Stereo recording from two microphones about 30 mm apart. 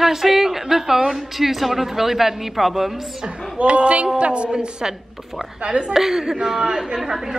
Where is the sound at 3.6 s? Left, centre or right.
Right.